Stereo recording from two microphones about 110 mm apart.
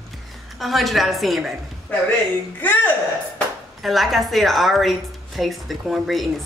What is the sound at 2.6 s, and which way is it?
Speech, 15° left (ahead or behind).